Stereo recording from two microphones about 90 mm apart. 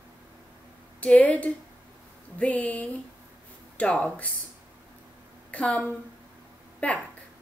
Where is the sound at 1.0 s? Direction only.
15° left (ahead or behind).